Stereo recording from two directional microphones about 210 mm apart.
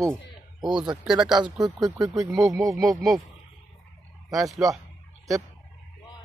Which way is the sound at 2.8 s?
Centre (ahead or behind).